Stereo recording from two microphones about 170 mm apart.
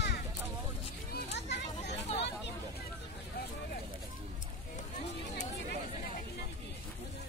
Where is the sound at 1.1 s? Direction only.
85° left.